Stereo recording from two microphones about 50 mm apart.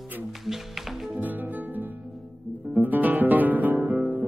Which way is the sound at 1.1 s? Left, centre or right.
Right.